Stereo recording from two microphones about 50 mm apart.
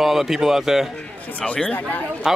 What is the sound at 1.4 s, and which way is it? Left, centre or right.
Speech, left.